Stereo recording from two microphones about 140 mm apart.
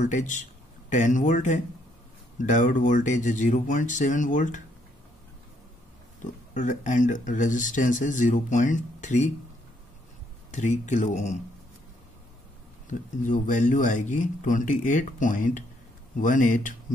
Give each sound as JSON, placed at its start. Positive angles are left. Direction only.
{"t": 0.0, "sound": "speech", "side_deg": 60}
{"t": 6.5, "sound": "speech", "side_deg": 65}
{"t": 10.5, "sound": "speech", "side_deg": 60}
{"t": 12.8, "sound": "speech", "side_deg": 65}